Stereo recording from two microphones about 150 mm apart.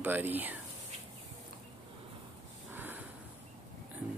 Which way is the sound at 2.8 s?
10° right (ahead or behind).